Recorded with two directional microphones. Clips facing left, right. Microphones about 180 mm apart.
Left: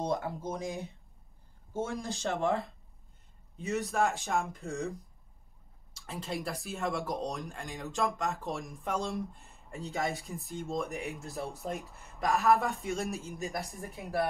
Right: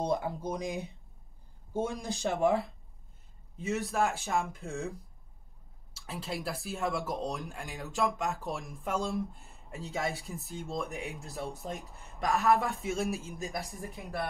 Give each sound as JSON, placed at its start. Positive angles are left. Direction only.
{"t": 0.0, "sound": "speech", "side_deg": -15}
{"t": 3.5, "sound": "speech", "side_deg": 0}
{"t": 5.9, "sound": "speech", "side_deg": -5}